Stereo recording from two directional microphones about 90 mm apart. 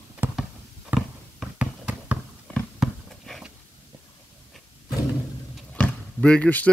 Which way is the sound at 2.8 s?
5° left (ahead or behind).